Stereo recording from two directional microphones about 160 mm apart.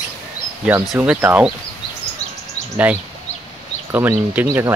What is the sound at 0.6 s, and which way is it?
Speech, 10° right (ahead or behind).